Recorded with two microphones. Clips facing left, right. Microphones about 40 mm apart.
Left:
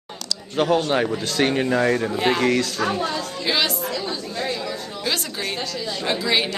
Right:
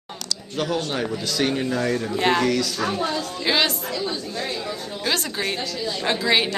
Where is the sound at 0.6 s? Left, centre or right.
Left.